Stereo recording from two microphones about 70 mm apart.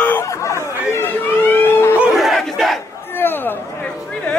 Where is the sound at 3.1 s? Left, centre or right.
Left.